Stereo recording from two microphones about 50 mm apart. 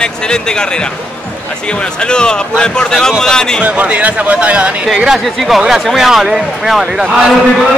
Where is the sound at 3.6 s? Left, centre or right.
Right.